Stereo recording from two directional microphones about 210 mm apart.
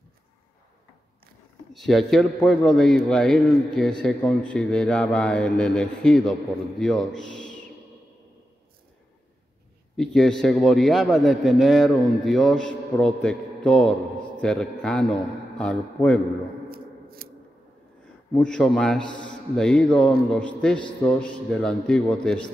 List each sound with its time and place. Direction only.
1.7 s a man's voice: centre (ahead or behind)
9.9 s a man's voice: centre (ahead or behind)
16.6 s a sound: 45° right (ahead or behind)
18.3 s a man's voice: 5° left (ahead or behind)